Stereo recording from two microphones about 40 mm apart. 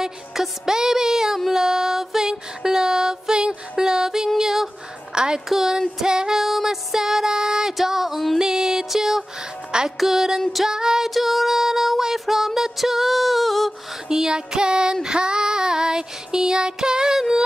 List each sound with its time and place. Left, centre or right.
0.0 s music: centre
4.4 s a sound: centre
5.1 s a woman's voice: right
5.5 s music: centre
9.7 s music: centre
9.9 s music: centre
11.1 s child singing: centre
14.0 s music: centre
15.0 s child singing: right